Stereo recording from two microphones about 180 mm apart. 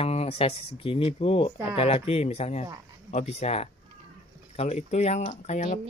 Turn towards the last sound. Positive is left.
turn(degrees=40)  # may be behind; listen again after turning